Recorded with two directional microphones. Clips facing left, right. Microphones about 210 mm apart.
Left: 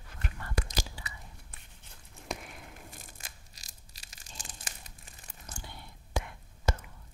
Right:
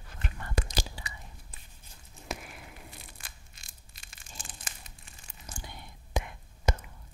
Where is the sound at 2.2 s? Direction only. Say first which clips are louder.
Even; centre (ahead or behind).